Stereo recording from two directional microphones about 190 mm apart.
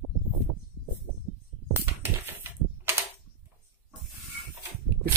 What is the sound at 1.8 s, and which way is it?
Typing, 10° right (ahead or behind).